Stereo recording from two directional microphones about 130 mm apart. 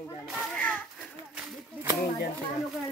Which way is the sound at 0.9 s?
5° right (ahead or behind).